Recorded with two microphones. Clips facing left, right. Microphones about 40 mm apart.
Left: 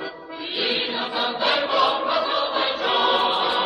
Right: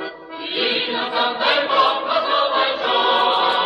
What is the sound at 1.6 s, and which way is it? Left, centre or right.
Choir, centre.